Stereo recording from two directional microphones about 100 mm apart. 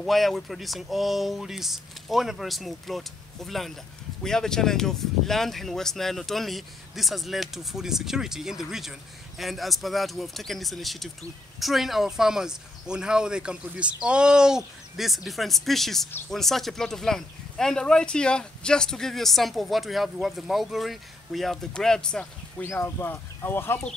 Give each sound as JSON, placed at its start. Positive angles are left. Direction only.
{"t": 0.0, "sound": "speech", "side_deg": 0}
{"t": 22.6, "sound": "speech", "side_deg": 25}